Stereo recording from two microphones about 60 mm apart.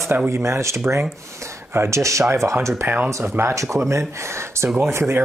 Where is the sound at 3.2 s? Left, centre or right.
Right.